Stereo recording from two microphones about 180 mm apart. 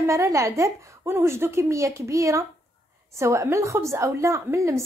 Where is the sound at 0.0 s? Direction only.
15° right (ahead or behind).